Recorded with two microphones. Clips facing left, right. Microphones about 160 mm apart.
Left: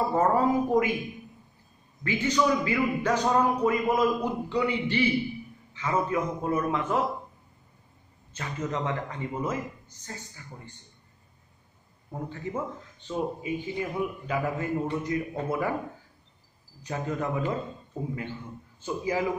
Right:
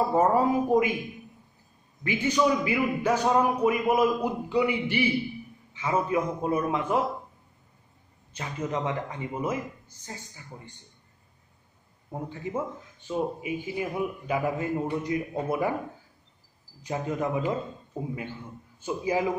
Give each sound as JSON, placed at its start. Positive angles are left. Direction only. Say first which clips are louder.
{"t": 0.1, "sound": "a woman's voice", "louder": "left 1 dB", "side_deg": -15}
{"t": 2.0, "sound": "a man's voice", "louder": "right 1 dB", "side_deg": -15}
{"t": 8.4, "sound": "a man's voice", "louder": "right 1 dB", "side_deg": -15}
{"t": 12.1, "sound": "a man's voice", "louder": "right 1 dB", "side_deg": -15}
{"t": 16.8, "sound": "a man's voice", "louder": "right 2 dB", "side_deg": -20}
{"t": 18.9, "sound": "a man's voice", "louder": "right 2 dB", "side_deg": -20}